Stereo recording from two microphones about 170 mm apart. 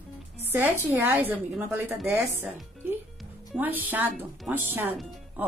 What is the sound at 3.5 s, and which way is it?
A woman's voice, 10° right (ahead or behind).